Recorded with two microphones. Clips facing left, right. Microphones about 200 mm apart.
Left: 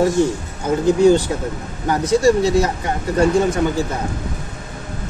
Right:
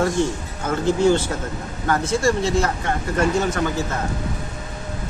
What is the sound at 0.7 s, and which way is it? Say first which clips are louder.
Speech: left 5 dB; 15° left (ahead or behind).